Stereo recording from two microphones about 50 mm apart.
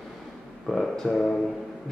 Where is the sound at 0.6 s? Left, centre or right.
Centre.